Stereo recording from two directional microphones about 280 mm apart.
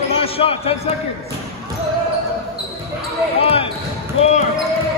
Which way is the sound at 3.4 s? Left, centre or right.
Left.